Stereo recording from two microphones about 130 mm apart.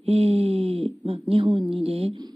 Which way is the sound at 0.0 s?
55° right (ahead or behind).